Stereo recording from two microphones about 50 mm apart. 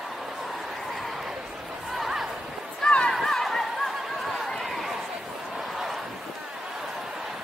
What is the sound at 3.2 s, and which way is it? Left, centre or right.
Chatter, centre.